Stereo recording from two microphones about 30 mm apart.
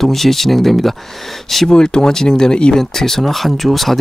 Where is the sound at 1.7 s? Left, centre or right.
Left.